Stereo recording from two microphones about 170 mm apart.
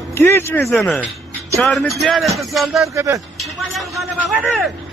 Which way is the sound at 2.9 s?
20° right (ahead or behind).